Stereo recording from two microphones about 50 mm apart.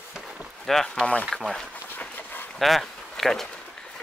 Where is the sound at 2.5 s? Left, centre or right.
Centre.